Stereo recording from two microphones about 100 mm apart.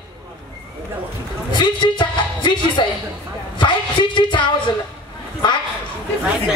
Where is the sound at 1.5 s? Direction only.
50° left (ahead or behind).